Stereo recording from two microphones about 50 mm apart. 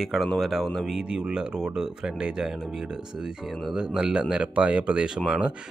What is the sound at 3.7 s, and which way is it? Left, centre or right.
Speech, centre.